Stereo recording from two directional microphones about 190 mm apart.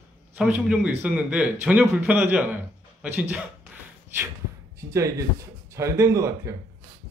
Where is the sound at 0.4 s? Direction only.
5° right (ahead or behind).